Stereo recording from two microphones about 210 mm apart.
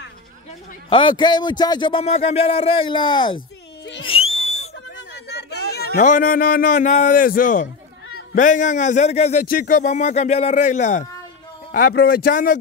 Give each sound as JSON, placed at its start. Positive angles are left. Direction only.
{"t": 0.8, "sound": "speech", "side_deg": 25}
{"t": 3.3, "sound": "a sound", "side_deg": 55}
{"t": 4.0, "sound": "whistle", "side_deg": 25}
{"t": 4.9, "sound": "a man's voice", "side_deg": 55}